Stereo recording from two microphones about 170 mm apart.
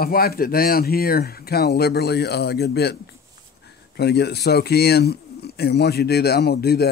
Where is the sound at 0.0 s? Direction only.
60° left (ahead or behind).